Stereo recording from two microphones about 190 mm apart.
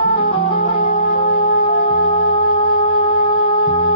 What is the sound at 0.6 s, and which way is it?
Music, 35° left (ahead or behind).